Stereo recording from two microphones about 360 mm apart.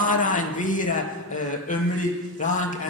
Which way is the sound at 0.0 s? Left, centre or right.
Left.